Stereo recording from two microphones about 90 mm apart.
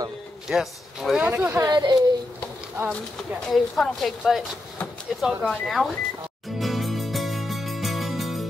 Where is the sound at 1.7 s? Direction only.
50° right (ahead or behind).